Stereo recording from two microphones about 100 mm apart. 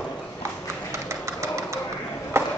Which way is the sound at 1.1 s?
30° right (ahead or behind).